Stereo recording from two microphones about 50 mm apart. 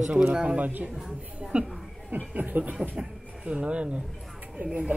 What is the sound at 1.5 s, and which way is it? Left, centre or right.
Speech, right.